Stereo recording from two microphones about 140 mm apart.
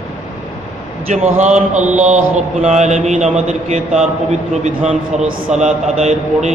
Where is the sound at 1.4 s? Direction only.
55° right (ahead or behind).